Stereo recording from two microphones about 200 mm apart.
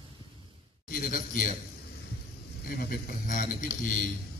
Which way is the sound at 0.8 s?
45° left (ahead or behind).